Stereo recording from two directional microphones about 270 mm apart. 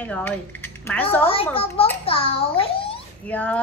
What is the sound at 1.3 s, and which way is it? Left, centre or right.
A child's voice, left.